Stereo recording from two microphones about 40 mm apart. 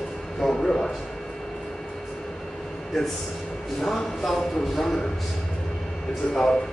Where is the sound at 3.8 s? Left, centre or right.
Centre.